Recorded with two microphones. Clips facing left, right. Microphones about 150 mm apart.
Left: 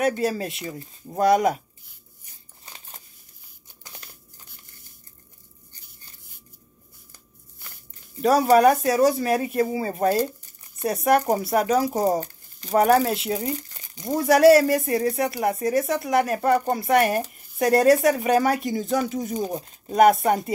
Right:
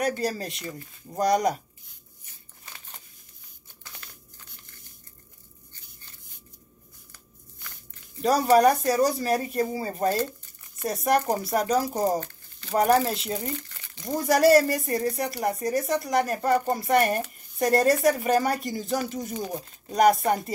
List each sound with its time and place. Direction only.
0.0 s speech: 5° left (ahead or behind)
0.7 s speech: 20° left (ahead or behind)
1.1 s speech: 5° left (ahead or behind)
3.8 s crumpling: 25° left (ahead or behind)
8.2 s speech: centre (ahead or behind)
13.6 s crumpling: 40° left (ahead or behind)
13.9 s speech: 5° left (ahead or behind)